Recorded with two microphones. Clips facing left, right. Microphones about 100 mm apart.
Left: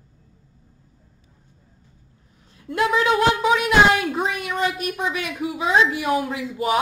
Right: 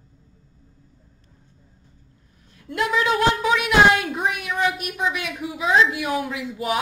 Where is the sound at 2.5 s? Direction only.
25° left (ahead or behind).